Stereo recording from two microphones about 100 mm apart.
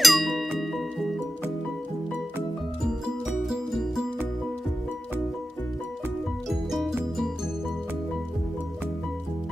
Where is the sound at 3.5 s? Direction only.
5° right (ahead or behind).